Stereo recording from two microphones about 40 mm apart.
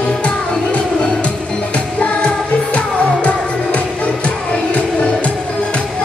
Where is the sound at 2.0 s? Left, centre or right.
Left.